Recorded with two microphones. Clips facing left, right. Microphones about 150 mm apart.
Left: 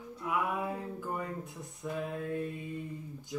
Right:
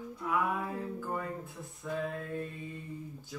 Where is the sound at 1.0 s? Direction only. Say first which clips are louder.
Even; 20° left (ahead or behind).